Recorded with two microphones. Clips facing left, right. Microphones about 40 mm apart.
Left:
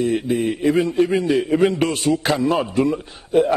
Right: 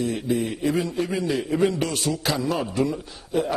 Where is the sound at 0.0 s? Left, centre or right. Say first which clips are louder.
Left 5 dB; left.